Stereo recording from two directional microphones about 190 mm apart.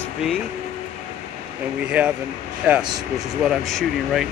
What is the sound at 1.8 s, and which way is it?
Speech, 5° right (ahead or behind).